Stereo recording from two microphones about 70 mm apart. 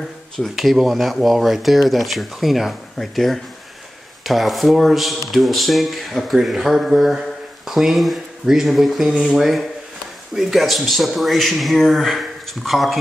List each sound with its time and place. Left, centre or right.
0.4 s speech: centre